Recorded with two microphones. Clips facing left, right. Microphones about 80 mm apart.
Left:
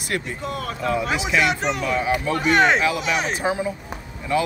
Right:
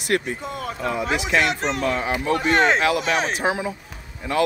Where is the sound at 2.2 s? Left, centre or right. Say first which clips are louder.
Even; right.